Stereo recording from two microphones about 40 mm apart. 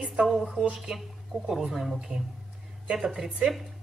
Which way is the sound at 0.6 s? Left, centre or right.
Centre.